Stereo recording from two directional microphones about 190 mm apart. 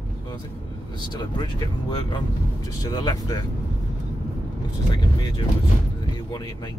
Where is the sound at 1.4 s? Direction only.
25° left (ahead or behind).